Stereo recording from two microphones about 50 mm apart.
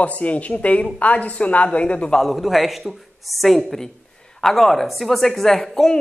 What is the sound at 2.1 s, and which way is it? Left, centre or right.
A man's voice, centre.